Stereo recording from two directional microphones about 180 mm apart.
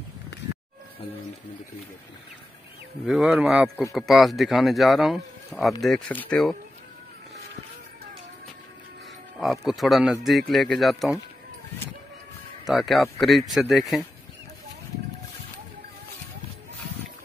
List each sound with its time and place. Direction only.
3.1 s speech: centre (ahead or behind)
9.7 s speech: centre (ahead or behind)
12.6 s speech: centre (ahead or behind)